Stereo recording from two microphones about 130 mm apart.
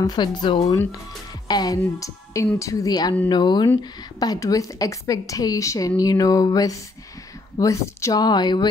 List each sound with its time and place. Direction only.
0.0 s a woman's voice: 35° left (ahead or behind)